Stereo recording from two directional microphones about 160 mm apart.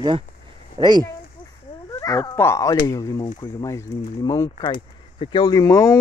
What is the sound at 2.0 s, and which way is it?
Speech, 20° left (ahead or behind).